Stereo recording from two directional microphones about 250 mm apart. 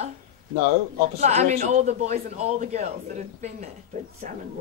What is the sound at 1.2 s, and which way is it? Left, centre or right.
A man's voice, right.